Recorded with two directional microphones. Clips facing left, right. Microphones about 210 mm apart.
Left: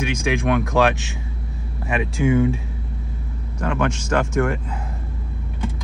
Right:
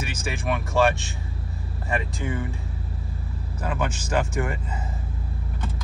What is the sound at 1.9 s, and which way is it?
Speech, 80° left.